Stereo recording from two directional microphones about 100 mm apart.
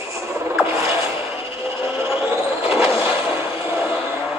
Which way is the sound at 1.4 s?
25° right (ahead or behind).